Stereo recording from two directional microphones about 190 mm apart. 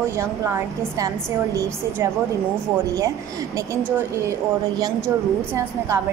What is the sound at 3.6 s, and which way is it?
Speech, 10° right (ahead or behind).